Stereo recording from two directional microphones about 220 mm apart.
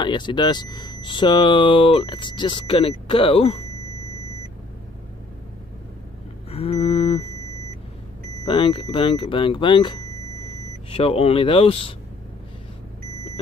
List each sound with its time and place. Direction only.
0.0 s speech: 20° left (ahead or behind)
6.5 s a sound: 25° left (ahead or behind)
8.5 s speech: 20° left (ahead or behind)